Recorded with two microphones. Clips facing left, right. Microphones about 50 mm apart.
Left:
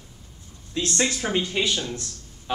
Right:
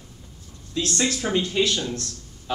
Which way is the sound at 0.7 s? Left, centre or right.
Left.